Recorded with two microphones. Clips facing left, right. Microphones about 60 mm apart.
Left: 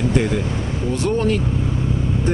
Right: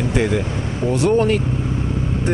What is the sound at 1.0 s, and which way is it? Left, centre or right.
Speech, right.